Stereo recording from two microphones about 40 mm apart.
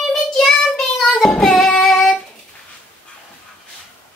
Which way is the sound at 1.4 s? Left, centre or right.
Centre.